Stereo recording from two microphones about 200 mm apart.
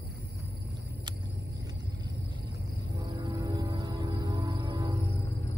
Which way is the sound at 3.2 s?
15° right (ahead or behind).